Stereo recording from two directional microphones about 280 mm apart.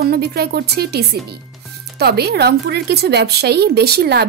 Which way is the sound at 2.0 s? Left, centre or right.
Right.